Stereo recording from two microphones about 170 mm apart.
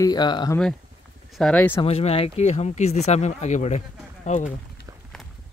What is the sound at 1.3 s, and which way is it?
Speech, 5° left (ahead or behind).